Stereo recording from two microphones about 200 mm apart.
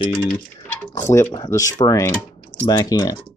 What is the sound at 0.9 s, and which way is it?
Speech, 15° left (ahead or behind).